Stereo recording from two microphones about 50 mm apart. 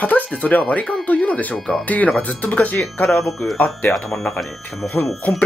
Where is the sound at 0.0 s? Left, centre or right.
Left.